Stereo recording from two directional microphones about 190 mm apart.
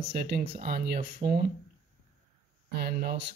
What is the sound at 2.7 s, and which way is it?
Speech, 55° right (ahead or behind).